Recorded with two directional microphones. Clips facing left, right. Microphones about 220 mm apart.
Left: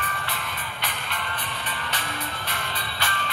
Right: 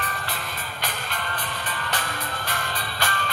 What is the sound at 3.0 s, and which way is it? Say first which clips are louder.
Music: right 3 dB; 45° right (ahead or behind).